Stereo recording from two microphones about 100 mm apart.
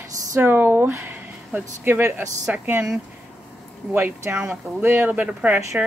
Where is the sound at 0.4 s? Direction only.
20° right (ahead or behind).